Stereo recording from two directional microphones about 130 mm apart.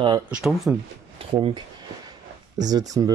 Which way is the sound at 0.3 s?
5° right (ahead or behind).